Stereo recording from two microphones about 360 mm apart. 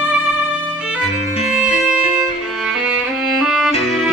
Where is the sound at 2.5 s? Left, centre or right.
Centre.